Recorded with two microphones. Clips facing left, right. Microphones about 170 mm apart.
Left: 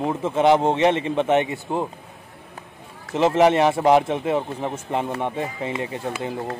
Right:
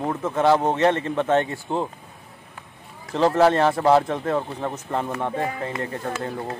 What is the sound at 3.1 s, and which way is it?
Speech, 20° left (ahead or behind).